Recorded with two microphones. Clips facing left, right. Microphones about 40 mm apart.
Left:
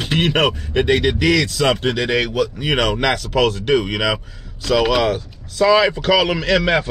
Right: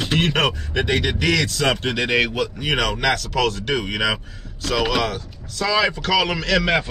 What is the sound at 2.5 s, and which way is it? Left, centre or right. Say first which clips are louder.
Speech: left 3 dB; centre.